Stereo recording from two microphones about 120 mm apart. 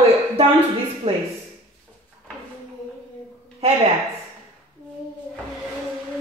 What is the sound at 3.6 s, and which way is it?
Speech, 60° right (ahead or behind).